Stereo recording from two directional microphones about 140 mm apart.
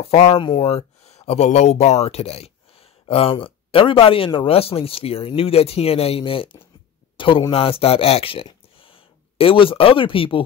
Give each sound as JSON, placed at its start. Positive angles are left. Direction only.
{"t": 0.1, "sound": "speech", "side_deg": 50}